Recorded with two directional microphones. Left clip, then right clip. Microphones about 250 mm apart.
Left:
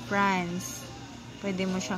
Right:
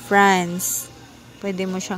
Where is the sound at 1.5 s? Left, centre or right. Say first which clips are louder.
Right 6 dB; right.